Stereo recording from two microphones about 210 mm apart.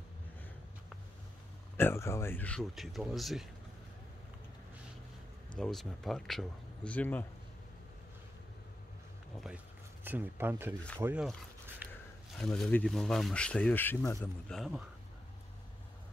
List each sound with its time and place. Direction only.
1.8 s speech: 10° left (ahead or behind)
5.6 s speech: centre (ahead or behind)
10.0 s speech: 10° right (ahead or behind)
11.8 s a sound: 10° right (ahead or behind)
12.4 s speech: 5° left (ahead or behind)
14.5 s speech: centre (ahead or behind)